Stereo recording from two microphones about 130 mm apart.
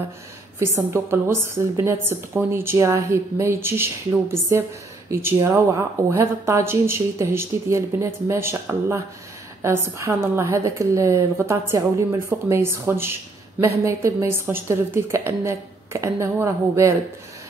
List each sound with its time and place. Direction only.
0.6 s a woman's voice: 20° right (ahead or behind)